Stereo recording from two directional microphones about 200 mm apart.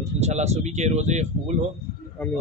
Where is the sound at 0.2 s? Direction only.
35° right (ahead or behind).